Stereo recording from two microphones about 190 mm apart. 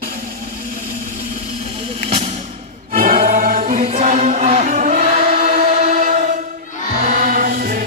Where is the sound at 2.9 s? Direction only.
45° right (ahead or behind).